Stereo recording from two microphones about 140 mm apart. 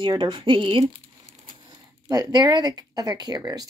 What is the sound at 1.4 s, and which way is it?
Crumpling, 35° right (ahead or behind).